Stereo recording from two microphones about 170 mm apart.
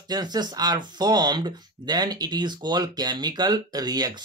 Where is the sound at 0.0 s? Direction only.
25° right (ahead or behind).